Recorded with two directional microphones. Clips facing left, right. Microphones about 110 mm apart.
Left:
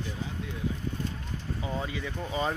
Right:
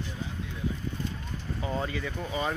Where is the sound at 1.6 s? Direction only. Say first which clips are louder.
Right 3 dB; 10° left (ahead or behind).